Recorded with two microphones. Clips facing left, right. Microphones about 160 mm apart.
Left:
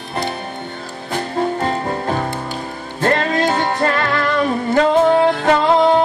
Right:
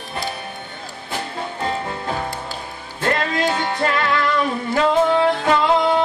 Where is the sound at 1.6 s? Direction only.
45° left (ahead or behind).